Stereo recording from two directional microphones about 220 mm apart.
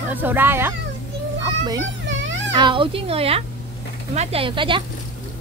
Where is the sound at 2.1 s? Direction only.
55° right (ahead or behind).